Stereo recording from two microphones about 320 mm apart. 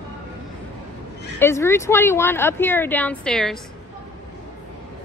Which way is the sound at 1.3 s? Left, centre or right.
Centre.